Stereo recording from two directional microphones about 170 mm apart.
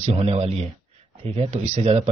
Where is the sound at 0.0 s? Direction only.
35° right (ahead or behind).